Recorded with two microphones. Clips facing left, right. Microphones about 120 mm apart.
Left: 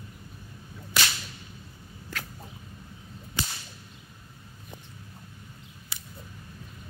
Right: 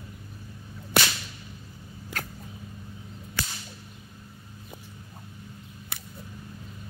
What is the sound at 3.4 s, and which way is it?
Whip, 20° left (ahead or behind).